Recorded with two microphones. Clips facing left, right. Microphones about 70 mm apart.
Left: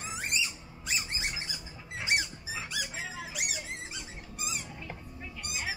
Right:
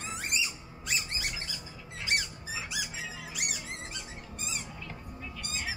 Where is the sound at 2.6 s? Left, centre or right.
Centre.